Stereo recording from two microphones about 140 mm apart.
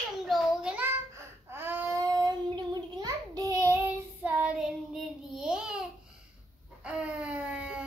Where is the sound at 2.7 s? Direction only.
30° right (ahead or behind); by 5.9 s 5° right (ahead or behind).